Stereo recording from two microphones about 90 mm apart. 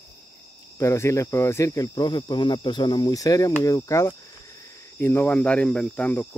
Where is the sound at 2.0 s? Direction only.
55° left (ahead or behind); by 4.1 s 35° left (ahead or behind).